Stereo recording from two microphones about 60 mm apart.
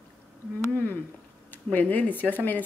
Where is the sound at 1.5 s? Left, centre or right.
Left.